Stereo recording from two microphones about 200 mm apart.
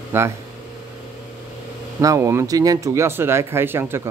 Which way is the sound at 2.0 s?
15° right (ahead or behind).